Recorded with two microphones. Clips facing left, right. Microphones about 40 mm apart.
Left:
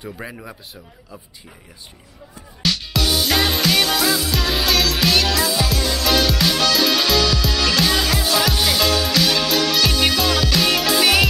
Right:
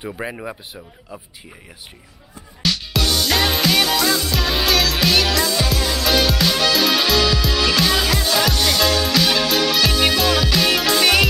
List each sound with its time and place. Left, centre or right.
0.0 s a man's voice: right
2.6 s music: centre